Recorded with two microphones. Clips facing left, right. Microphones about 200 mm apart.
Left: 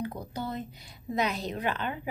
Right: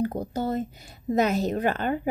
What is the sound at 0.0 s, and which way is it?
A woman's voice, 45° right (ahead or behind).